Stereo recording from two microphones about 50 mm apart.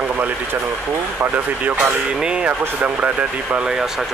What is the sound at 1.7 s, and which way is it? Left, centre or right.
Speech, centre.